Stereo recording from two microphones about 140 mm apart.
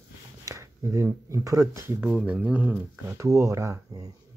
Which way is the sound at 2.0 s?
10° right (ahead or behind).